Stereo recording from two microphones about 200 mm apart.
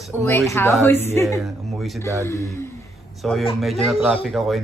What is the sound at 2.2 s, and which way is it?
Speech, 15° left (ahead or behind).